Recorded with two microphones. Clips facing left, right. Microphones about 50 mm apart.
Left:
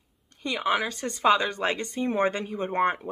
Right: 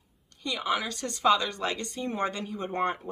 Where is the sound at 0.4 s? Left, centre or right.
Left.